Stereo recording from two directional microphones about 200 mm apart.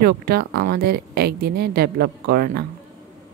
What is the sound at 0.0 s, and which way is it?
Speech, 50° right (ahead or behind).